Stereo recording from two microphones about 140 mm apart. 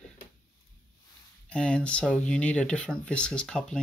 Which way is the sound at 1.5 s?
5° left (ahead or behind).